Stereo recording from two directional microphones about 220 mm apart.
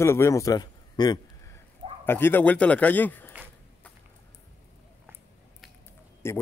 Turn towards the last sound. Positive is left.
turn(degrees=10)  # may be behind; listen again after turning